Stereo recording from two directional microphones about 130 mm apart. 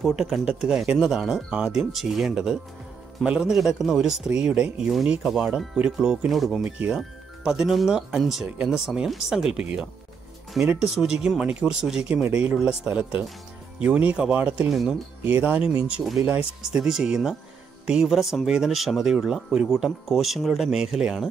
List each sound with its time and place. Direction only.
0.0 s speech: centre (ahead or behind)